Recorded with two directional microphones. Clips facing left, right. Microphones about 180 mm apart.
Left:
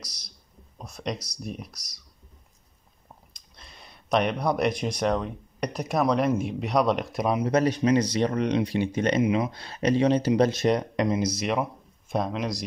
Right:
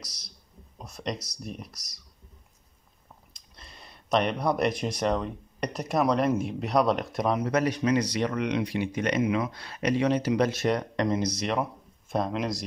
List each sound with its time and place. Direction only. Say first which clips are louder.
0.7 s speech: left 1 dB; centre (ahead or behind)
3.5 s speech: even; centre (ahead or behind)
7.4 s speech: left 3 dB; 25° left (ahead or behind)
10.6 s speech: left 3 dB; 20° left (ahead or behind); by 12.6 s centre (ahead or behind)